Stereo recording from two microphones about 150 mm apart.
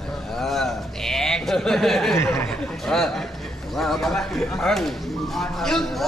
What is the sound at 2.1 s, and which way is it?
Speech, 20° left (ahead or behind).